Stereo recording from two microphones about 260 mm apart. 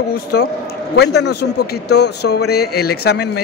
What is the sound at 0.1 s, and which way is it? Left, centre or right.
Speech, left.